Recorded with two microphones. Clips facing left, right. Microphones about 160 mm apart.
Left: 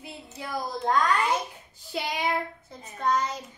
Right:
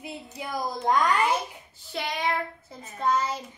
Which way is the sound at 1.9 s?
10° left (ahead or behind).